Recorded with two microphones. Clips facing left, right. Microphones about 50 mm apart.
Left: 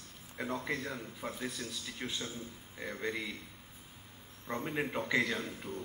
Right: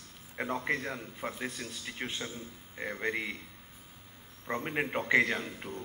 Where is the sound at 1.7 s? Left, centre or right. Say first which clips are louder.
Right 2 dB; right.